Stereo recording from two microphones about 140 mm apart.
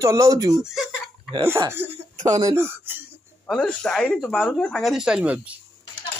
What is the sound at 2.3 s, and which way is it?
Speech, 25° right (ahead or behind).